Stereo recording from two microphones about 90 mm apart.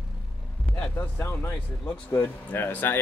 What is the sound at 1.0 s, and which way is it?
Speech, 30° left (ahead or behind).